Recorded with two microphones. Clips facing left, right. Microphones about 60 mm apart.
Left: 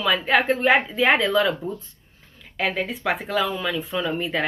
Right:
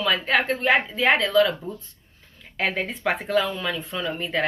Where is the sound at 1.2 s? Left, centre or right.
Centre.